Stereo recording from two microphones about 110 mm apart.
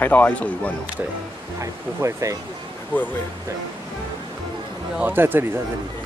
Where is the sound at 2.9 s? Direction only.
15° left (ahead or behind).